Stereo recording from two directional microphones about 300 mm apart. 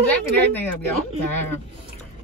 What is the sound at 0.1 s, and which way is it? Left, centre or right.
Speech, centre.